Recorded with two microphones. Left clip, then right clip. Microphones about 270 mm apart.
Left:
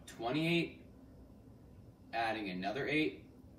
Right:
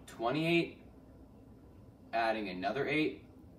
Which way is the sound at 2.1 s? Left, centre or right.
Centre.